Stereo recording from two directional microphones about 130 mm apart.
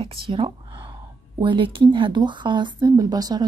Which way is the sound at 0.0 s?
40° right (ahead or behind).